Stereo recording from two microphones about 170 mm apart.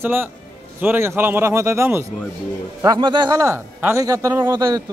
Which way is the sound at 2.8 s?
25° right (ahead or behind).